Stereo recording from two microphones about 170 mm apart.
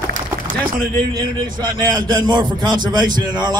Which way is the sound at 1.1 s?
20° right (ahead or behind).